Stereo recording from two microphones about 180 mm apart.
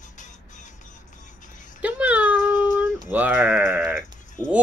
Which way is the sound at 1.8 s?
10° right (ahead or behind).